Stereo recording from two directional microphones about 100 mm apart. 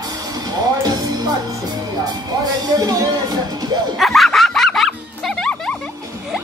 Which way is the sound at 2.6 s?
40° right (ahead or behind).